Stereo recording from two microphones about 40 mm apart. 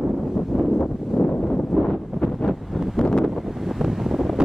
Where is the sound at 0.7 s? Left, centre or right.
Left.